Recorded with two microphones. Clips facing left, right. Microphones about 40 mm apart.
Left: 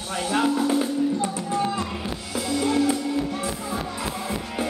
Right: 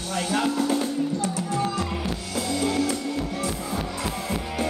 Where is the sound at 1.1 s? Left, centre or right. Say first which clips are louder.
Left 1 dB; left.